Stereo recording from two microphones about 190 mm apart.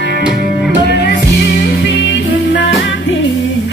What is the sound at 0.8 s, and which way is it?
Music, 60° left (ahead or behind).